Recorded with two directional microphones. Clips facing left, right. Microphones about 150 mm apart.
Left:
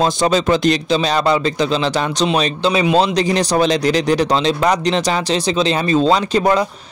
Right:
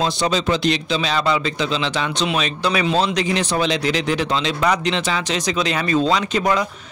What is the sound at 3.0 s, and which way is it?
Speech, 35° left (ahead or behind).